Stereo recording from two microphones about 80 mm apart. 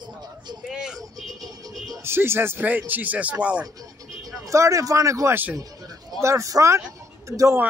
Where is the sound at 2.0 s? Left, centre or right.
Right.